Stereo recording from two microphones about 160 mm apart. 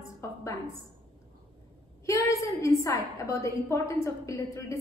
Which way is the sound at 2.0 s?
20° left (ahead or behind).